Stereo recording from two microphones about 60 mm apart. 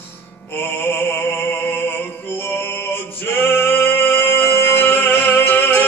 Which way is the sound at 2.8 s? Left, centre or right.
Left.